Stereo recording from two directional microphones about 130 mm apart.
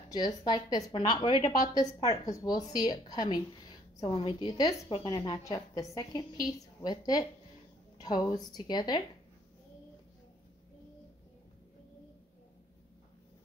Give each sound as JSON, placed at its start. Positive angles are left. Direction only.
{"t": 0.1, "sound": "a woman's voice", "side_deg": 30}